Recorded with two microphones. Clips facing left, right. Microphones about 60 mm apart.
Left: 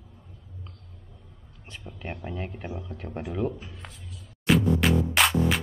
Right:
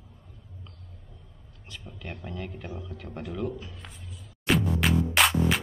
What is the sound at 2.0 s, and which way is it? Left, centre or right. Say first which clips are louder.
Speech: left 3 dB; left.